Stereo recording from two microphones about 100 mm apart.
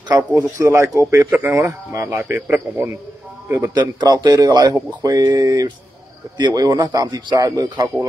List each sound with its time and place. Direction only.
0.3 s a man's voice: 25° right (ahead or behind)
4.0 s speech: 40° right (ahead or behind)